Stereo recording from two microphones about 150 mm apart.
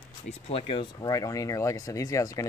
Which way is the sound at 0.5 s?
35° left (ahead or behind).